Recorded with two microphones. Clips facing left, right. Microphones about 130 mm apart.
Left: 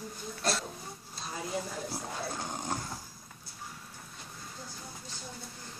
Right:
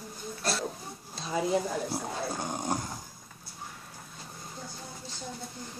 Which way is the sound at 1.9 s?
15° right (ahead or behind).